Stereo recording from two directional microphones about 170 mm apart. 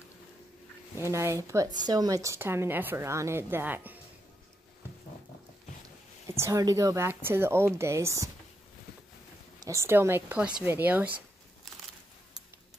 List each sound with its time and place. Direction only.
0.9 s a woman's voice: 15° right (ahead or behind)
6.2 s a woman's voice: 15° right (ahead or behind)
9.6 s a woman's voice: 15° right (ahead or behind)